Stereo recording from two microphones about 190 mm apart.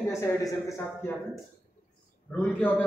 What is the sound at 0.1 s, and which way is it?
A man's voice, 15° left (ahead or behind).